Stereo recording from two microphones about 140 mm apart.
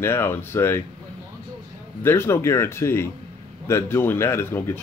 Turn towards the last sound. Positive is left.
turn(degrees=20)  # may be behind; listen again after turning